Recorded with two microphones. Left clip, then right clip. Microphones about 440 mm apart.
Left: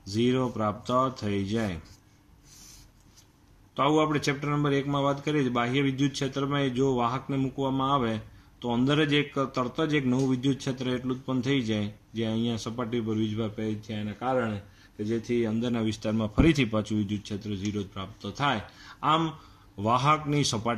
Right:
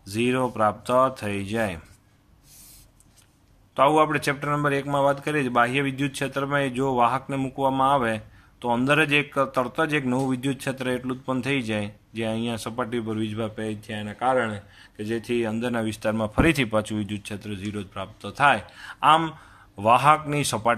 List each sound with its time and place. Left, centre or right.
0.2 s speech: centre
3.7 s a man's voice: centre